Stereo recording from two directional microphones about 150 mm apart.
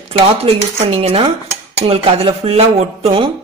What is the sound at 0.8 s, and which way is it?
Speech, 40° right (ahead or behind).